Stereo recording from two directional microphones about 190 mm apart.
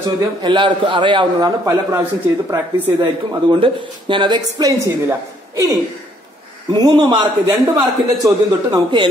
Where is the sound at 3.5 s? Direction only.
25° right (ahead or behind).